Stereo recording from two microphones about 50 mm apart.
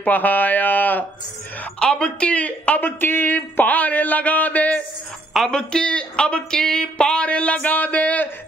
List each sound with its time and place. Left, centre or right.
0.0 s speech: left
1.8 s speech: centre
5.5 s speech: centre
7.2 s speech: left